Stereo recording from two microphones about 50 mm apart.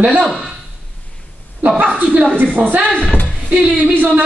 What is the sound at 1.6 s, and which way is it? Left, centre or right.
Speech, right.